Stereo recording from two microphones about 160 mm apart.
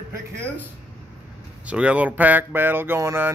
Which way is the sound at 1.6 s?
10° right (ahead or behind).